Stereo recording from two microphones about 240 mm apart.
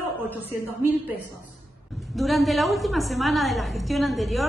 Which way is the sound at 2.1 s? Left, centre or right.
Centre.